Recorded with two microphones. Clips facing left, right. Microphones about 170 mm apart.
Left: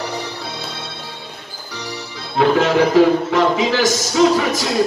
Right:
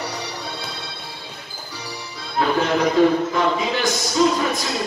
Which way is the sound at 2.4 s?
80° left.